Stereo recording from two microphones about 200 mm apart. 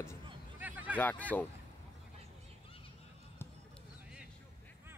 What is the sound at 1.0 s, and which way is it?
Speech, 10° left (ahead or behind).